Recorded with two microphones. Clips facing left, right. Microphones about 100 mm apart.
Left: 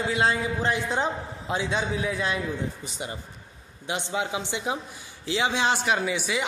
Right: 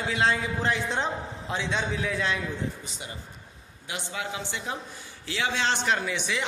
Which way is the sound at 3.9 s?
20° left (ahead or behind).